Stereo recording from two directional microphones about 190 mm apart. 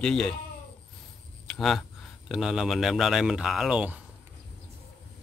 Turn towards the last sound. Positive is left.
turn(degrees=-5)  # may be behind; listen again after turning